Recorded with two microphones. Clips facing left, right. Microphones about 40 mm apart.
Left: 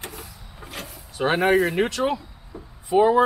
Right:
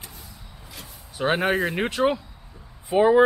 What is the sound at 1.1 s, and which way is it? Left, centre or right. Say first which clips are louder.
Speech: left 3 dB; centre.